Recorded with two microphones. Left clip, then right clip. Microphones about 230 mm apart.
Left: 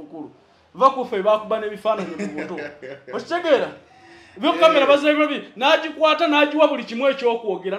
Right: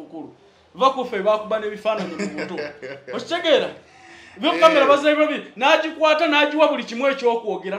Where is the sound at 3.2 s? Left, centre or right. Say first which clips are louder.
Even; left.